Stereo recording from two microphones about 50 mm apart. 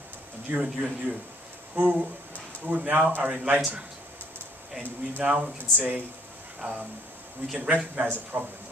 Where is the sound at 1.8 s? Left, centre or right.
Right.